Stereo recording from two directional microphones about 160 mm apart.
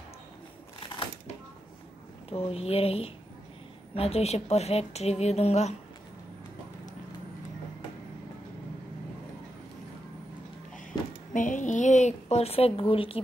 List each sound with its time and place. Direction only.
2.2 s a woman's voice: 35° left (ahead or behind)
11.3 s a woman's voice: 55° left (ahead or behind); by 13.2 s 35° left (ahead or behind)